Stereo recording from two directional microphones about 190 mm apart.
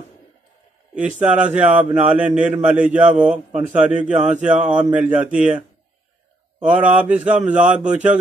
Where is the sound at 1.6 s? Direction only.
5° right (ahead or behind).